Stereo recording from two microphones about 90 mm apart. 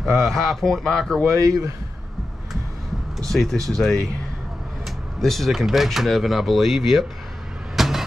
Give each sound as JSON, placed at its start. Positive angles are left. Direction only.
{"t": 0.0, "sound": "speech", "side_deg": 5}
{"t": 3.2, "sound": "speech", "side_deg": 5}
{"t": 7.7, "sound": "a sound", "side_deg": -5}